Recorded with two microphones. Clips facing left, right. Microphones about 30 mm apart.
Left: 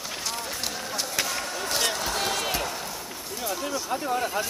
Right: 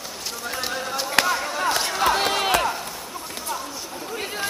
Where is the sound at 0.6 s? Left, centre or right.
Centre.